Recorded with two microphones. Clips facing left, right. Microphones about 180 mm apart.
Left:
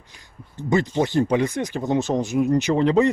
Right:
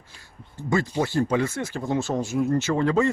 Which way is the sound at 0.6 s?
20° left (ahead or behind).